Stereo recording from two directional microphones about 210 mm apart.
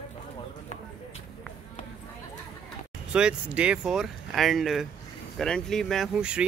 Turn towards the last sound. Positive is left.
turn(degrees=-5)  # may be behind; listen again after turning